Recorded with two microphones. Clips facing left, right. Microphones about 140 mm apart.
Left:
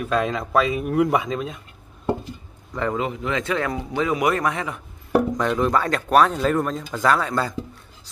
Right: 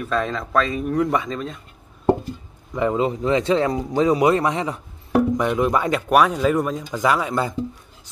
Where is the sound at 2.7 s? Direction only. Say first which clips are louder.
Right 4 dB; 10° right (ahead or behind).